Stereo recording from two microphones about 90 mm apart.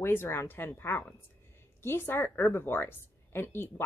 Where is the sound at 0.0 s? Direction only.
25° left (ahead or behind).